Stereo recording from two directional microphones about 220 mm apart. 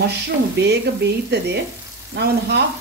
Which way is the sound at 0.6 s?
50° right (ahead or behind).